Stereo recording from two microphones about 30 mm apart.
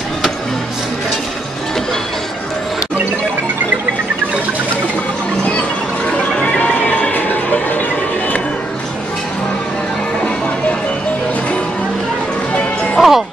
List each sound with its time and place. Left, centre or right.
6.4 s music: left
7.1 s music: left
13.0 s music: centre